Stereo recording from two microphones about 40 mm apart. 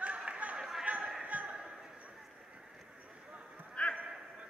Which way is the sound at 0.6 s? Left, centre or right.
Centre.